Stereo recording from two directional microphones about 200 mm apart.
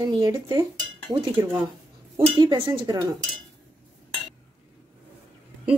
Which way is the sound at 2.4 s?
20° right (ahead or behind).